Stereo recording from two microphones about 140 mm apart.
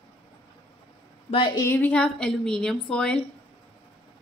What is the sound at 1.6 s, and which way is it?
A woman's voice, 15° left (ahead or behind).